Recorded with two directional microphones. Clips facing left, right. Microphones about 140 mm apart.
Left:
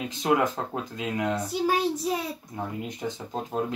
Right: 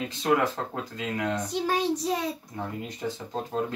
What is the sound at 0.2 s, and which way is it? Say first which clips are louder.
Speech: left 1 dB; 15° left (ahead or behind).